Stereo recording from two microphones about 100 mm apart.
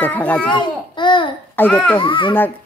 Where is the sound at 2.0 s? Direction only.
55° left (ahead or behind).